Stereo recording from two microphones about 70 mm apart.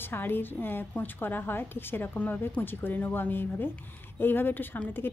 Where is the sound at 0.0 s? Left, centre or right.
Left.